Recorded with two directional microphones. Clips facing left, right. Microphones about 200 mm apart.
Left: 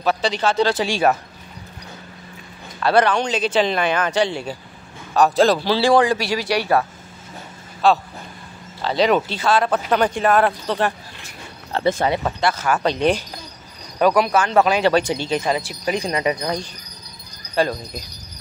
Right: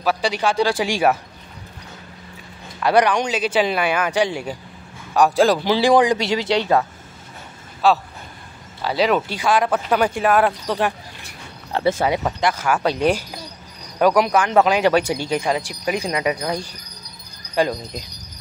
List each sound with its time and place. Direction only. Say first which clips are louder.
0.0 s speech: even; 10° right (ahead or behind)
2.8 s speech: even; 15° right (ahead or behind)
7.8 s speech: even; 5° right (ahead or behind)